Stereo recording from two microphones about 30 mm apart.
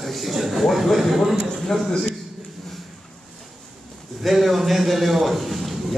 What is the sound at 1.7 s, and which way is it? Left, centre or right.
Speech, centre.